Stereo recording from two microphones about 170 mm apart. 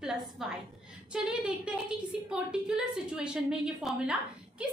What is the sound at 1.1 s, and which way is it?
A woman's voice, 5° right (ahead or behind).